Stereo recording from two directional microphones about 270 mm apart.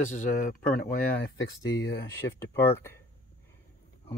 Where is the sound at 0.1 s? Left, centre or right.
Left.